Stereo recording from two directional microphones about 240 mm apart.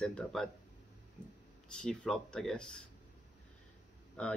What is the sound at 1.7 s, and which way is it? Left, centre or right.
Speech, centre.